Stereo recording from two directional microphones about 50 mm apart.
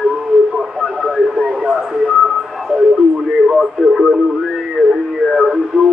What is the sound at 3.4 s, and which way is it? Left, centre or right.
Radio, centre.